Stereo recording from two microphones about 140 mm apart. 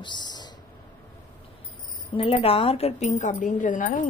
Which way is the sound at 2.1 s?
40° left (ahead or behind).